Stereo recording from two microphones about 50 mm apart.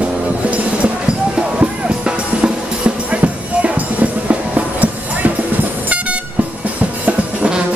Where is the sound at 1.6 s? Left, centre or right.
Right.